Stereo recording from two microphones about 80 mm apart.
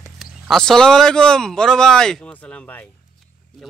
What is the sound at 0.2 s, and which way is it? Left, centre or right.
Speech, centre.